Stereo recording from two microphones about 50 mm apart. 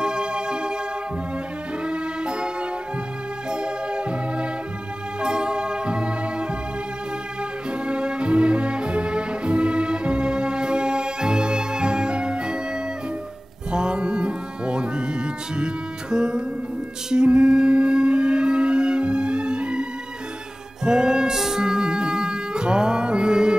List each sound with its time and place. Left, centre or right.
0.0 s music: centre
1.9 s music: centre
7.8 s music: centre
13.7 s music: centre